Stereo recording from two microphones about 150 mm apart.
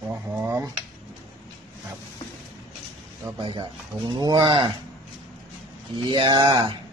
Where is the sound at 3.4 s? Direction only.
35° right (ahead or behind).